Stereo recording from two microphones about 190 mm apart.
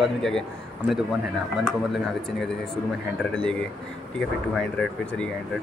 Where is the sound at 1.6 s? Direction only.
Centre (ahead or behind).